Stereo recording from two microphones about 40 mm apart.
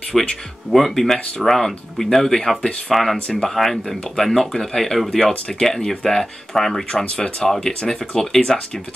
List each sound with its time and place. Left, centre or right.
0.1 s speech: centre
3.3 s speech: centre